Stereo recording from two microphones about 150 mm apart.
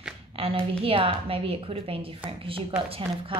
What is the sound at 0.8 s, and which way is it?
A woman's voice, 40° right (ahead or behind).